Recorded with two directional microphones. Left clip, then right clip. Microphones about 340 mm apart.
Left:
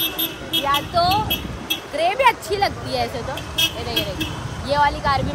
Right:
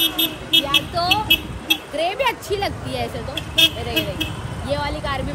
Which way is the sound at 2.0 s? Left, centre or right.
Centre.